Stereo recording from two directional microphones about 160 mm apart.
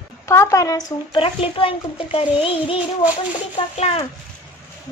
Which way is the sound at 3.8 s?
40° left (ahead or behind).